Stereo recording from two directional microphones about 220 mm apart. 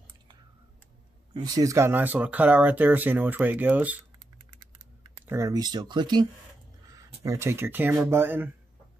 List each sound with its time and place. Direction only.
1.3 s speech: 20° right (ahead or behind)
5.2 s speech: 15° right (ahead or behind)
7.2 s speech: 10° right (ahead or behind)